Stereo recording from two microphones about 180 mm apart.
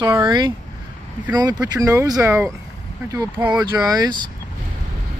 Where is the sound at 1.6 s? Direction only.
20° right (ahead or behind).